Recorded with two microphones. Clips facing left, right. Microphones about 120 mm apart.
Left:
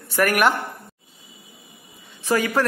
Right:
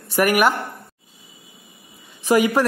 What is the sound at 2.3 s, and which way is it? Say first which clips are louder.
Speech: right 4 dB; 15° right (ahead or behind).